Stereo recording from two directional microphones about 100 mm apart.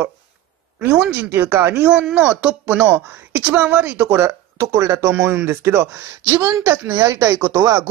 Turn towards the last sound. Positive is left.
turn(degrees=-35)  # may be behind; listen again after turning